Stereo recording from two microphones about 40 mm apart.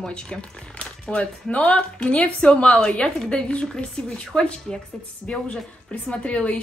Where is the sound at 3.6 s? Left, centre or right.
Centre.